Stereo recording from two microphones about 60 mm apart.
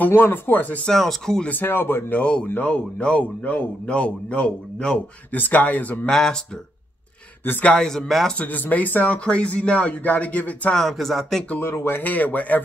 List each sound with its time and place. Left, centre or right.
0.0 s speech: left
0.8 s speech: centre
1.5 s speech: left
2.1 s a man's voice: centre
5.3 s a man's voice: left
6.0 s speech: centre
7.6 s speech: centre
8.3 s a man's voice: left
10.7 s speech: centre
11.6 s speech: left
12.0 s a man's voice: left